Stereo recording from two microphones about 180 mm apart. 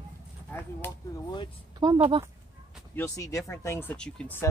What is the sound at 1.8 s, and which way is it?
Speech, 25° right (ahead or behind).